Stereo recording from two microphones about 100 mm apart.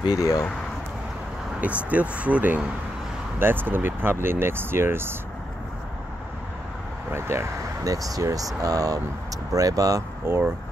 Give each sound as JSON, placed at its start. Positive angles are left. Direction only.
{"t": 0.0, "sound": "speech", "side_deg": 40}
{"t": 1.6, "sound": "speech", "side_deg": -15}
{"t": 7.1, "sound": "speech", "side_deg": -25}
{"t": 10.2, "sound": "speech", "side_deg": -25}